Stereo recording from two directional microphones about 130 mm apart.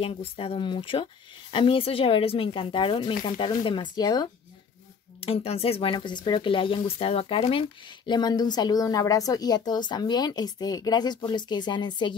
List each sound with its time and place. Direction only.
0.0 s speech: 45° left (ahead or behind)
5.2 s speech: 50° left (ahead or behind)
8.1 s speech: 30° left (ahead or behind)